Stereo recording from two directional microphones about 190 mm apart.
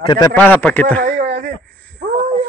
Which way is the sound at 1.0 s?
50° right (ahead or behind).